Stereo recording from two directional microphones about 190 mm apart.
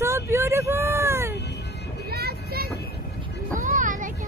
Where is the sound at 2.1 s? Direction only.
55° right (ahead or behind).